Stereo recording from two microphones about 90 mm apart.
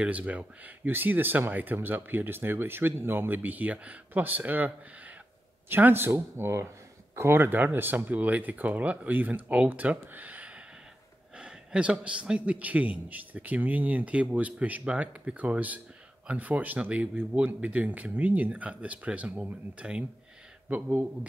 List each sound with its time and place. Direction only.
0.0 s a man's voice: 15° right (ahead or behind)